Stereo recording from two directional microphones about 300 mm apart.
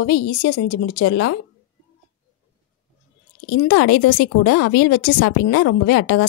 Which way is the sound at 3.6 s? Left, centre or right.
Left.